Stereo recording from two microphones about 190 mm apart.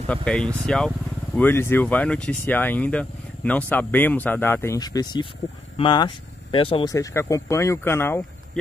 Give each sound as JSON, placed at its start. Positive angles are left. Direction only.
{"t": 0.1, "sound": "speech", "side_deg": 5}